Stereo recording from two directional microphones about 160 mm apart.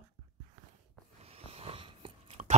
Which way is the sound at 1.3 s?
40° right (ahead or behind).